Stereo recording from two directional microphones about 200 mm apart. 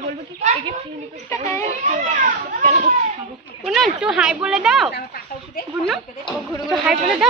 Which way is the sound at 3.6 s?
Centre (ahead or behind).